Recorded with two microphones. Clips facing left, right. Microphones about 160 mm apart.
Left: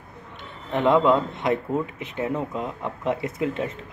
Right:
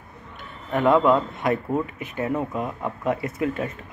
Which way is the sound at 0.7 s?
20° left (ahead or behind).